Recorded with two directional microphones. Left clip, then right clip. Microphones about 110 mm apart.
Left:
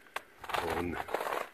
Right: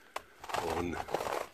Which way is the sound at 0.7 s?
5° right (ahead or behind).